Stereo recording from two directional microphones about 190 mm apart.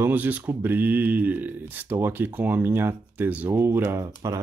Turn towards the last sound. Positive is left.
turn(degrees=-15)  # may be behind; listen again after turning